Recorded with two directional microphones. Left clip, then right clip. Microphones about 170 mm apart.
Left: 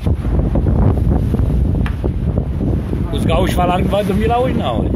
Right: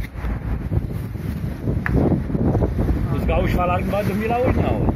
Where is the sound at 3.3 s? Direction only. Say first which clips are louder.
Left 5 dB; 30° left (ahead or behind).